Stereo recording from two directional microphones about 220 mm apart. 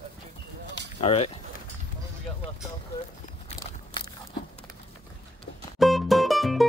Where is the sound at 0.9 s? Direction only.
25° left (ahead or behind).